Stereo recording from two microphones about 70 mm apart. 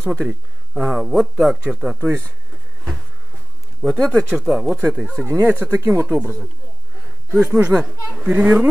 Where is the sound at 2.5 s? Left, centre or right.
Centre.